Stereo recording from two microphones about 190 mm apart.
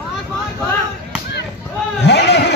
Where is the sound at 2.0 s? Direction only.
65° left (ahead or behind).